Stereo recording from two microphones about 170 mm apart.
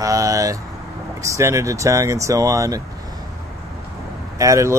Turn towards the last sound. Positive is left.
turn(degrees=-20)  # may be behind; listen again after turning